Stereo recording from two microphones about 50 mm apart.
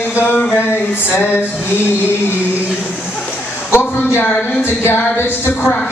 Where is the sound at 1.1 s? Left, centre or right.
Left.